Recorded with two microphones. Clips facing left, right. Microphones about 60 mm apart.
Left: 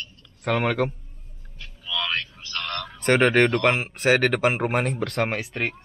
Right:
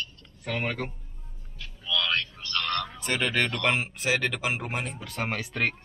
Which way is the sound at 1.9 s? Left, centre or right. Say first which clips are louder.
Even; centre.